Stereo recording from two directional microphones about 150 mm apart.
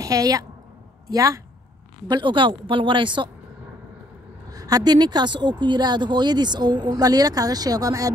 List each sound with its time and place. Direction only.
0.0 s a woman's voice: 25° right (ahead or behind)
4.5 s speech: 25° right (ahead or behind)